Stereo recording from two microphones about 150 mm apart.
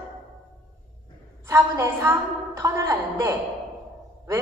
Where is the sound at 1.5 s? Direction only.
15° right (ahead or behind).